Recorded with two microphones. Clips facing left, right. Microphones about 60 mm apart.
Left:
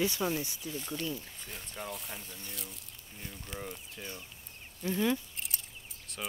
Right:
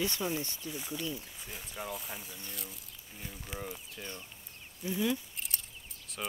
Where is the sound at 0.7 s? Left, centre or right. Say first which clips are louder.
Left 2 dB; centre.